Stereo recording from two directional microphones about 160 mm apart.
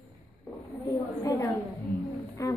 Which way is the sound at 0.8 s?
20° left (ahead or behind).